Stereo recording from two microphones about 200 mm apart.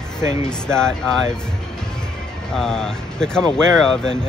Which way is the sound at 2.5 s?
5° left (ahead or behind).